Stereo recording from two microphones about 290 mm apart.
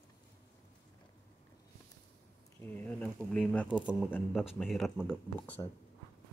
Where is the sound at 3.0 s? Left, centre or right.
Centre.